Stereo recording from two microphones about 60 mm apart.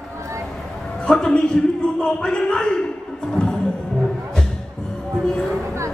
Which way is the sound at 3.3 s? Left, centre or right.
Centre.